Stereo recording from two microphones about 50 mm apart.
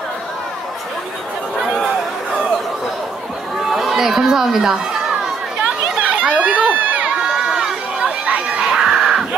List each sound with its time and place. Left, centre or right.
3.5 s chatter: centre
5.6 s crowd: right
7.2 s a sound: centre